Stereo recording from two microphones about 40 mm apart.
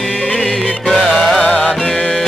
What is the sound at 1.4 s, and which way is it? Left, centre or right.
Music, left.